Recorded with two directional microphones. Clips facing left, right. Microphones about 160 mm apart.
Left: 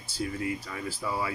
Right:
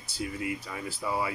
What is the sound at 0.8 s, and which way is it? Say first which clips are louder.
Speech: right 1 dB; 25° right (ahead or behind).